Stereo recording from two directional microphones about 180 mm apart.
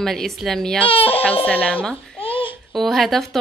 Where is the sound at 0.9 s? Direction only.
30° left (ahead or behind).